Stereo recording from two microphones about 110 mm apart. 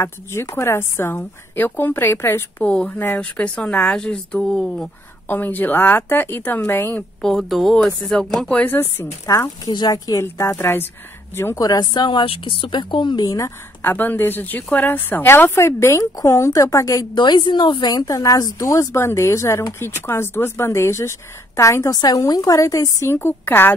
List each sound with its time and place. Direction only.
0.0 s speech: 25° left (ahead or behind); by 4.8 s 5° left (ahead or behind)
5.3 s speech: 15° left (ahead or behind)
7.2 s speech: 5° left (ahead or behind)
9.2 s speech: 30° left (ahead or behind)
11.6 s speech: 40° left (ahead or behind)
13.8 s speech: 20° left (ahead or behind)